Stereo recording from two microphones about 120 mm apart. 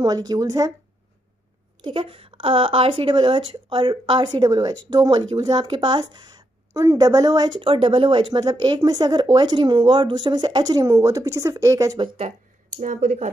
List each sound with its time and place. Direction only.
0.0 s speech: 35° right (ahead or behind)
1.8 s speech: 45° right (ahead or behind); by 12.0 s 30° right (ahead or behind)
12.8 s speech: 85° right